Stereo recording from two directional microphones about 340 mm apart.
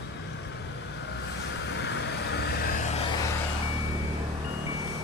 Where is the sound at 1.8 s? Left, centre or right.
Left.